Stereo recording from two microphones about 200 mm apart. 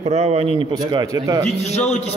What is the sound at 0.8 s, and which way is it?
Speech, 20° right (ahead or behind).